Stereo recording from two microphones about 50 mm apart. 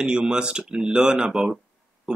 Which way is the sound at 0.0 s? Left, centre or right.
Centre.